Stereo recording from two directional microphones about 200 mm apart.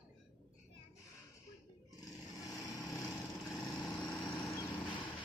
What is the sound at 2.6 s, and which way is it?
Vehicle, 15° left (ahead or behind).